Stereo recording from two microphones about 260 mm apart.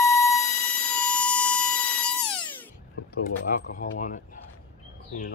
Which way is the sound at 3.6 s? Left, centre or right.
Left.